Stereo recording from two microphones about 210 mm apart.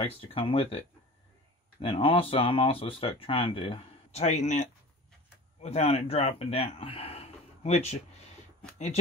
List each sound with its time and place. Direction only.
0.0 s speech: 25° left (ahead or behind)